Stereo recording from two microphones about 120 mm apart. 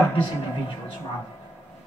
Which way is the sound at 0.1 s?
45° left (ahead or behind).